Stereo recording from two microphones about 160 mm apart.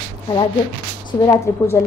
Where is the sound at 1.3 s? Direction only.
15° left (ahead or behind).